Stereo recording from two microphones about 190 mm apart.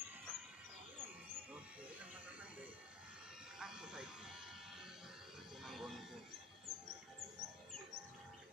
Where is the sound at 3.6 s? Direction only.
5° right (ahead or behind).